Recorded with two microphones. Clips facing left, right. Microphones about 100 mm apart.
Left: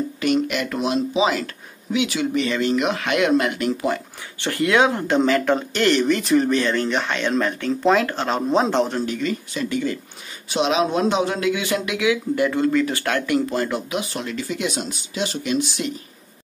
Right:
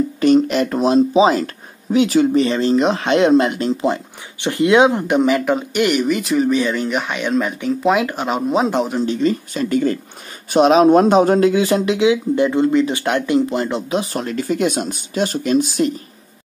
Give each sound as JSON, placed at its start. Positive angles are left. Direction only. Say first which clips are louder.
{"t": 0.2, "sound": "speech", "louder": "right 7 dB", "side_deg": -35}
{"t": 9.0, "sound": "speech", "louder": "right 6 dB", "side_deg": -30}